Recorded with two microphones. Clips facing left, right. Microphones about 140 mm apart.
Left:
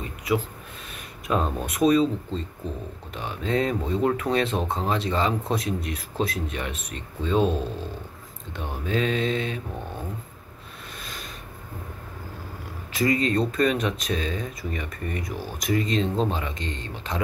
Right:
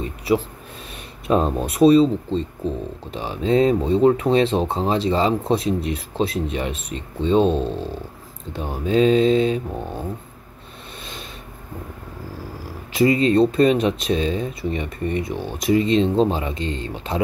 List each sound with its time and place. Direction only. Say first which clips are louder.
0.0 s a sound: right 5 dB; 30° right (ahead or behind)
1.2 s speech: right 6 dB; 30° right (ahead or behind)
12.9 s speech: right 7 dB; 30° right (ahead or behind)